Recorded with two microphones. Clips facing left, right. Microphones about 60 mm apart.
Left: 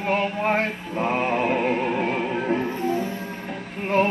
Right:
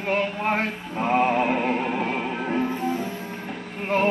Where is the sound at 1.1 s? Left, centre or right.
Centre.